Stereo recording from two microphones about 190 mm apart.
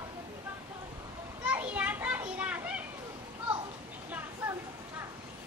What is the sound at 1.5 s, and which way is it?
Children playing, 5° right (ahead or behind).